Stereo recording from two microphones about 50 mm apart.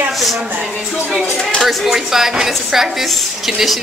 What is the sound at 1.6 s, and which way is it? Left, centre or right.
Speech, centre.